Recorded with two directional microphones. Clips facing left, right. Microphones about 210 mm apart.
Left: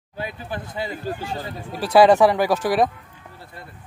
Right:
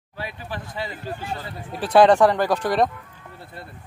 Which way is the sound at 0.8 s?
25° left (ahead or behind).